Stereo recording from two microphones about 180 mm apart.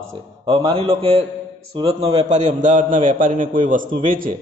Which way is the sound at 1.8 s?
35° right (ahead or behind).